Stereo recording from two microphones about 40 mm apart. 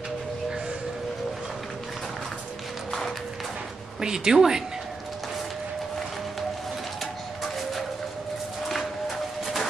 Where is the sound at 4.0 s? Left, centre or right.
Centre.